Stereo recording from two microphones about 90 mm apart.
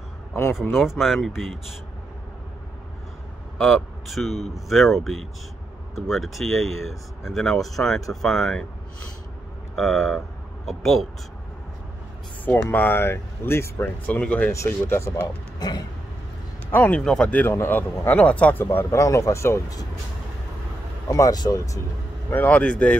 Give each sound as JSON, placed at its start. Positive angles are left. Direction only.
{"t": 0.3, "sound": "speech", "side_deg": 30}
{"t": 0.7, "sound": "speech", "side_deg": -5}
{"t": 3.5, "sound": "a man's voice", "side_deg": 0}
{"t": 9.8, "sound": "a sound", "side_deg": 0}
{"t": 10.8, "sound": "speech", "side_deg": 0}
{"t": 12.4, "sound": "speech", "side_deg": 20}
{"t": 14.5, "sound": "speech", "side_deg": 35}
{"t": 15.6, "sound": "a sound", "side_deg": 50}
{"t": 16.9, "sound": "speech", "side_deg": 10}
{"t": 17.5, "sound": "speech", "side_deg": 25}
{"t": 18.9, "sound": "speech", "side_deg": 35}
{"t": 21.1, "sound": "speech", "side_deg": 45}
{"t": 22.3, "sound": "speech", "side_deg": 20}